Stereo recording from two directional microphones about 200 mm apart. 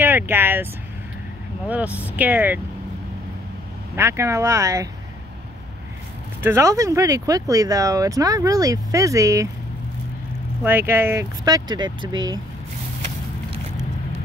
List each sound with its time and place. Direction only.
0.0 s speech: 10° right (ahead or behind)
1.7 s speech: 5° right (ahead or behind)
3.9 s speech: 15° right (ahead or behind)
6.4 s speech: 15° right (ahead or behind)
10.6 s speech: 10° right (ahead or behind)